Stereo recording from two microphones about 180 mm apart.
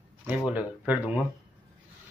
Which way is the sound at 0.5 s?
10° right (ahead or behind).